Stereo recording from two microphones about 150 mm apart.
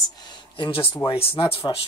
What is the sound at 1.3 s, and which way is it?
Speech, 35° left (ahead or behind).